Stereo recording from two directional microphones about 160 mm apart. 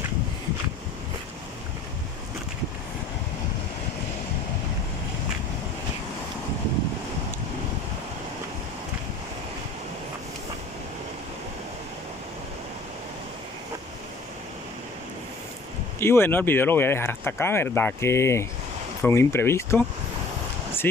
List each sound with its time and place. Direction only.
16.0 s speech: 15° left (ahead or behind)
20.8 s speech: 10° left (ahead or behind)